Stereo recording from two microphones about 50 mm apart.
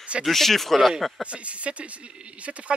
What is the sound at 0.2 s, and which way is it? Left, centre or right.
Speech, centre.